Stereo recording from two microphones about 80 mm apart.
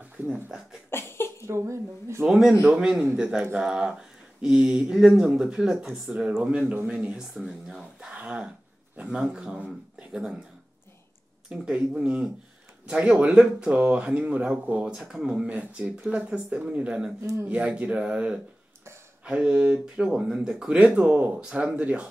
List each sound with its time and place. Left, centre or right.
0.3 s speech: centre
0.8 s a sound: left
1.4 s speech: right
2.2 s speech: centre
6.9 s speech: centre
8.1 s a sound: centre
9.0 s speech: centre
11.4 s speech: centre
17.2 s speech: right
17.5 s speech: centre